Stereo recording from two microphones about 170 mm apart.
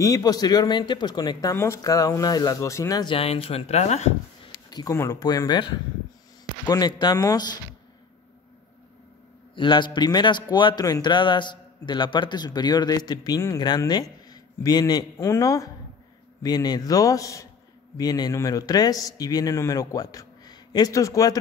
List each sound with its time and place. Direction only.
0.0 s speech: 20° left (ahead or behind)
3.2 s speech: 35° left (ahead or behind)
4.6 s speech: 20° left (ahead or behind)
9.6 s a man's voice: 30° left (ahead or behind)